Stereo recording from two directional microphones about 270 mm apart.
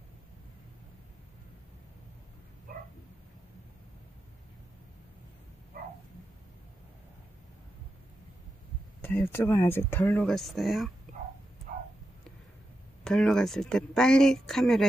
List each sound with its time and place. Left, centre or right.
5.7 s bow-wow: right
9.0 s speech: centre
11.7 s a sound: right
13.0 s speech: centre